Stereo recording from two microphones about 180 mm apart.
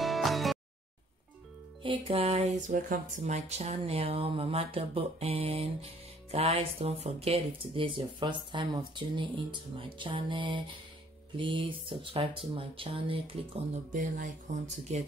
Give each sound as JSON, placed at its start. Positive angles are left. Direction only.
{"t": 0.0, "sound": "music", "side_deg": 0}
{"t": 1.8, "sound": "speech", "side_deg": -30}
{"t": 2.7, "sound": "speech", "side_deg": -50}
{"t": 13.9, "sound": "speech", "side_deg": -45}